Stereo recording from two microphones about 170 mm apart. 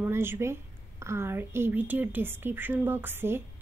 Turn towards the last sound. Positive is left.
turn(degrees=-15)  # may be behind; listen again after turning